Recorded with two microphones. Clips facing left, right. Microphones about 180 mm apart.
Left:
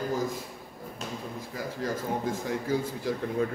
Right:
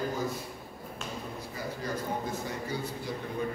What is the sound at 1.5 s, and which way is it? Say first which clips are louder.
A man's voice: left 3 dB; 90° left.